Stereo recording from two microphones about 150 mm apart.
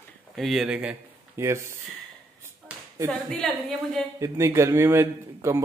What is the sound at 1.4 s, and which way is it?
Speech, 15° right (ahead or behind).